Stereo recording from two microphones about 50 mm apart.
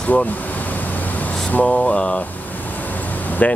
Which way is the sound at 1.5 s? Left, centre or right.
Left.